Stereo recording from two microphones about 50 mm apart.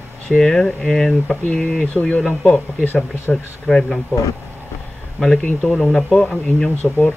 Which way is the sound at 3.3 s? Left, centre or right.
Centre.